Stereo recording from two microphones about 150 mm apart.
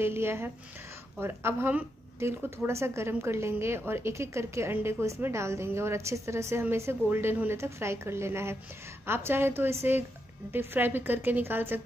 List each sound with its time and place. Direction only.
0.0 s speech: 15° right (ahead or behind)